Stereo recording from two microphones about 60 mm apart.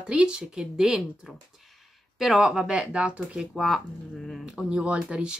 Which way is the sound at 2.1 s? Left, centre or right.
Centre.